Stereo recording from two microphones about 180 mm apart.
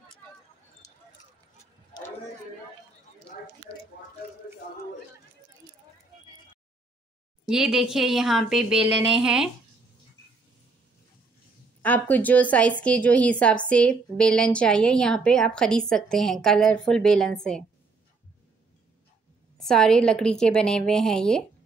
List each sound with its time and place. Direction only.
0.8 s a sound: 20° left (ahead or behind)
7.4 s a woman's voice: 5° right (ahead or behind)
11.8 s a woman's voice: 10° left (ahead or behind)
19.6 s a woman's voice: 5° left (ahead or behind)